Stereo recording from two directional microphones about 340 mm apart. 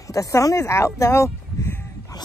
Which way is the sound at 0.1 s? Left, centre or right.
Centre.